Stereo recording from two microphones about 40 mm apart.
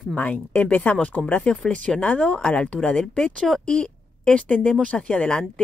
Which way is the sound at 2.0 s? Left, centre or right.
Left.